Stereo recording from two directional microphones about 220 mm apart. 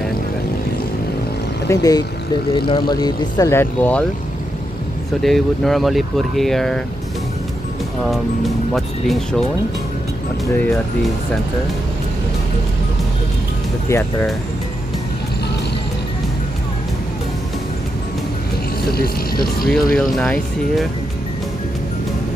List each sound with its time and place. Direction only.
1.7 s speech: 15° left (ahead or behind)
5.2 s speech: centre (ahead or behind)
8.7 s speech: centre (ahead or behind)
10.4 s speech: 10° left (ahead or behind)
18.9 s speech: 45° left (ahead or behind)
19.7 s speech: 5° left (ahead or behind)